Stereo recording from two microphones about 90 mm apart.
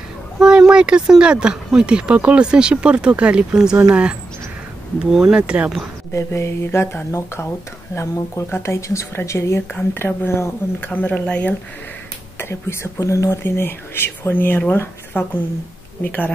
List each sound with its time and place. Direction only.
0.4 s speech: 10° right (ahead or behind)
6.1 s speech: 30° left (ahead or behind)
10.8 s speech: 15° left (ahead or behind)
12.4 s speech: 25° left (ahead or behind)